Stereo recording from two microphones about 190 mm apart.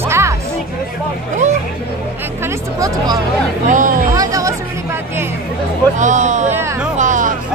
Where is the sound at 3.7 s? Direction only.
40° right (ahead or behind).